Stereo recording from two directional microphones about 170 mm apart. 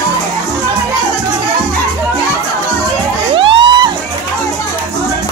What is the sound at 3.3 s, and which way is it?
Music, 30° right (ahead or behind).